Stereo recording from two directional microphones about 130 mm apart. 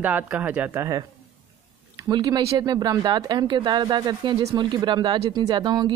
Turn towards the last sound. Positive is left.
turn(degrees=-35)  # may be behind; listen again after turning